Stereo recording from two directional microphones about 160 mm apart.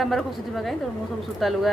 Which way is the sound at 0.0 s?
Centre (ahead or behind).